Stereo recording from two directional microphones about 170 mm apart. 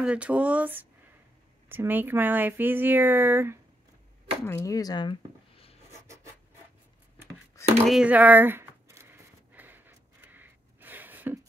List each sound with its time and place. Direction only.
0.0 s speech: 5° right (ahead or behind)
4.5 s speech: 15° left (ahead or behind)
7.8 s a sound: 5° right (ahead or behind)